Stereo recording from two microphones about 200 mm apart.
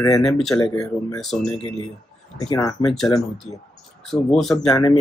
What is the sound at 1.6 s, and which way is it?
Speech, 25° right (ahead or behind).